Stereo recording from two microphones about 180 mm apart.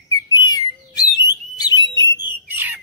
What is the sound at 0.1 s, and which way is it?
Bird, 20° left (ahead or behind).